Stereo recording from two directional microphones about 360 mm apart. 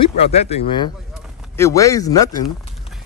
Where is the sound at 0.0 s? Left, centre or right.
Centre.